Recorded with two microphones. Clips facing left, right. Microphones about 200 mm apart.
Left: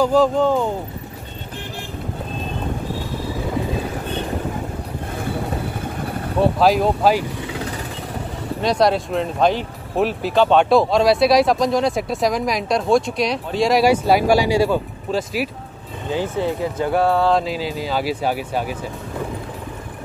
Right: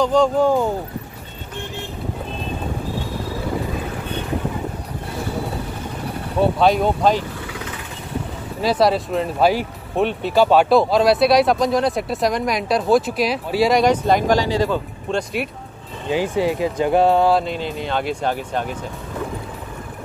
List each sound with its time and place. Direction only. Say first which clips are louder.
0.0 s speech: left 1 dB; 5° left (ahead or behind)
0.4 s speech: right 1 dB; 10° right (ahead or behind)
6.4 s speech: even; centre (ahead or behind)
8.5 s speech: even; 5° right (ahead or behind)
16.1 s speech: right 2 dB; 15° right (ahead or behind)
17.3 s speech: even; centre (ahead or behind)